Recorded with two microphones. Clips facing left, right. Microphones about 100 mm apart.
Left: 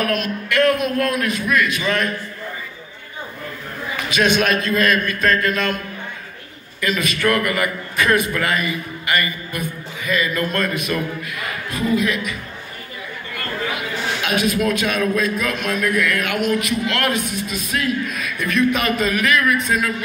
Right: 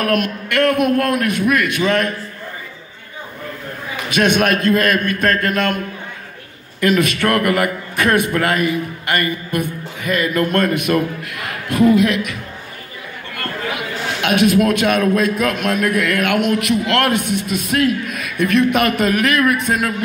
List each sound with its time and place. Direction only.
0.0 s a man's voice: 60° right (ahead or behind)
4.1 s a man's voice: 55° right (ahead or behind)
6.8 s a man's voice: 60° right (ahead or behind)
14.2 s a man's voice: 65° right (ahead or behind)